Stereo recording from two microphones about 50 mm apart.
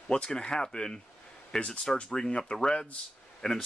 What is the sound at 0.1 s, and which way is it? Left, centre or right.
Speech, centre.